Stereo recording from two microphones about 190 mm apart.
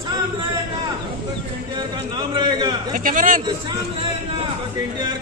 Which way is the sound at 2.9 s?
45° right (ahead or behind).